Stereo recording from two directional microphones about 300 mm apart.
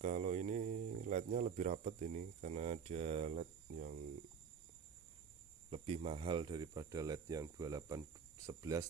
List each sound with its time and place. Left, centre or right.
0.0 s speech: right
5.7 s speech: centre